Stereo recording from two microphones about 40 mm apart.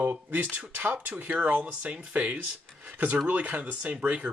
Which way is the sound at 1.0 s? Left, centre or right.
Right.